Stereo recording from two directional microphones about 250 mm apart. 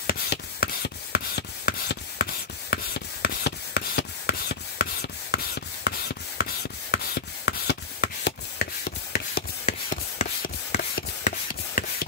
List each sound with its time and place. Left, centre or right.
0.0 s rub: left